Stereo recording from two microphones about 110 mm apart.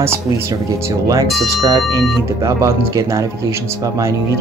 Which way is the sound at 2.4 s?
30° right (ahead or behind).